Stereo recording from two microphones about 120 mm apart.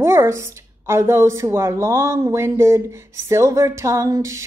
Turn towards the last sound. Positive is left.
turn(degrees=-25)  # may be behind; listen again after turning